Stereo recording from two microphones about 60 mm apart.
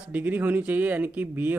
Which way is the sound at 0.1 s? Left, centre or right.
Right.